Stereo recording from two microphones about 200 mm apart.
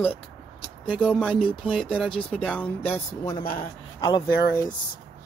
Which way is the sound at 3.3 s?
25° left (ahead or behind).